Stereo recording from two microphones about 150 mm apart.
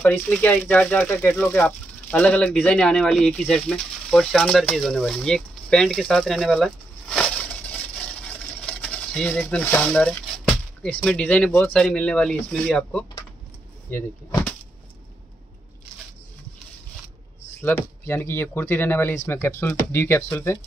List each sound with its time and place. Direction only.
0.0 s speech: 10° left (ahead or behind)
8.3 s a sound: 10° left (ahead or behind)
10.8 s speech: 5° left (ahead or behind)
17.6 s speech: 15° left (ahead or behind)